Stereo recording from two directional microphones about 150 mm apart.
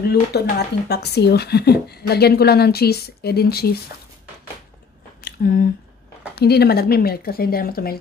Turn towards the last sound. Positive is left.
turn(degrees=85)